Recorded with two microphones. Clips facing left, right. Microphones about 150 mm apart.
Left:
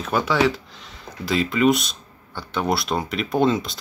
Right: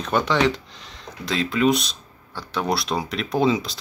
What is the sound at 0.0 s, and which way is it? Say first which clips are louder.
Speech: even; 5° left (ahead or behind).